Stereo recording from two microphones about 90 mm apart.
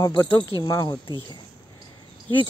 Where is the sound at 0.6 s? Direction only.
45° left (ahead or behind).